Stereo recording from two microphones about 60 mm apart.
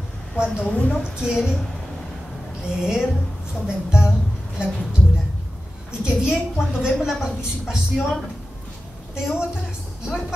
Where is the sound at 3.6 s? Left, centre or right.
Centre.